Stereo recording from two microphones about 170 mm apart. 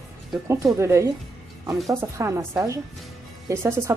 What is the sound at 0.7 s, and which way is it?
Speech, 15° right (ahead or behind).